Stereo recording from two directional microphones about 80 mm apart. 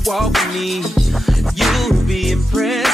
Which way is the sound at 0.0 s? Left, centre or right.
Centre.